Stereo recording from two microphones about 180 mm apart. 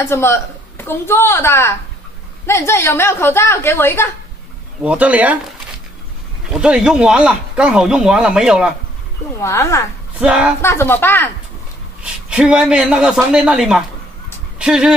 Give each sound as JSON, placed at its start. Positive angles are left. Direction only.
{"t": 0.0, "sound": "a woman's voice", "side_deg": 15}
{"t": 4.8, "sound": "speech", "side_deg": -10}
{"t": 6.4, "sound": "speech", "side_deg": -5}
{"t": 9.4, "sound": "a woman's voice", "side_deg": 15}
{"t": 10.1, "sound": "speech", "side_deg": -5}
{"t": 10.6, "sound": "a woman's voice", "side_deg": 15}
{"t": 12.0, "sound": "speech", "side_deg": -5}